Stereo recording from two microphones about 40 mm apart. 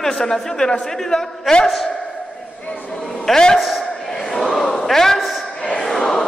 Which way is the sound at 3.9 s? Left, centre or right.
Centre.